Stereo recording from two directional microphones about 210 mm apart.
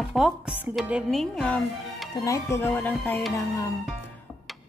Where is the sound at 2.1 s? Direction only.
15° left (ahead or behind).